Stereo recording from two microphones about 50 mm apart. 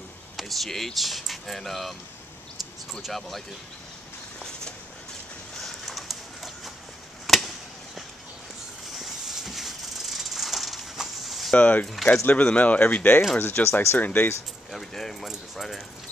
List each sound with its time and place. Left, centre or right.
0.4 s speech: centre
2.6 s a sound: centre
3.1 s speech: centre
5.6 s bird: centre
7.2 s chop: centre
8.9 s a sound: centre
11.5 s speech: left
14.7 s speech: centre